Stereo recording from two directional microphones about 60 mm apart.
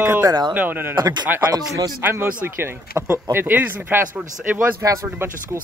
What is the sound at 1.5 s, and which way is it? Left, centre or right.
Speech, right.